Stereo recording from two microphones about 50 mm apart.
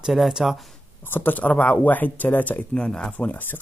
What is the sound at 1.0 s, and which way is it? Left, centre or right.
Speech, left.